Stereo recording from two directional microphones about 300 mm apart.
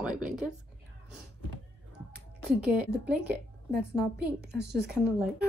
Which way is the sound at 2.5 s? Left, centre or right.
Centre.